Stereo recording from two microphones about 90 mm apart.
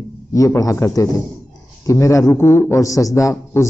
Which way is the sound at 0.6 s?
35° left (ahead or behind).